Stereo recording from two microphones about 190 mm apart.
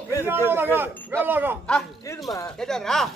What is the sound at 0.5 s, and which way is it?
Speech, 10° right (ahead or behind).